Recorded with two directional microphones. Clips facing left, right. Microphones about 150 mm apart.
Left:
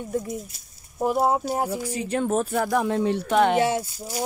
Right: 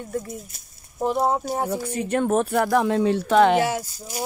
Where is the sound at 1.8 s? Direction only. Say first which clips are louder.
Right 2 dB; 55° right (ahead or behind); by 3.5 s 90° right.